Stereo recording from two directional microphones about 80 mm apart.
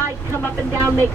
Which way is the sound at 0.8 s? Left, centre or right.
Right.